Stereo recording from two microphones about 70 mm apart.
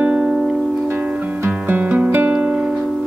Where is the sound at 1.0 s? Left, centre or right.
Right.